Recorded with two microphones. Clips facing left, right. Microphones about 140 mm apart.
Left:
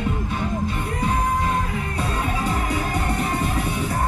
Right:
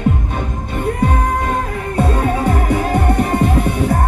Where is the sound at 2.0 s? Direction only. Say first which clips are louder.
Right 10 dB; 55° right (ahead or behind).